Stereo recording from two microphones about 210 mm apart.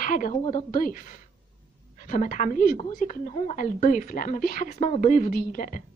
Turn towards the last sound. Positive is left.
turn(degrees=40)  # may be behind; listen again after turning